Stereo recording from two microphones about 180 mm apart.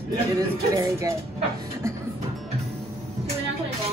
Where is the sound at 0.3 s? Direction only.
20° right (ahead or behind).